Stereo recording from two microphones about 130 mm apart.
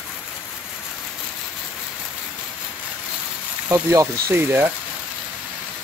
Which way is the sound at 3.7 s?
20° right (ahead or behind).